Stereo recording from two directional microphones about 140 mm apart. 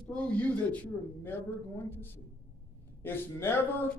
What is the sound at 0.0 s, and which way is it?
A man's voice, 10° left (ahead or behind).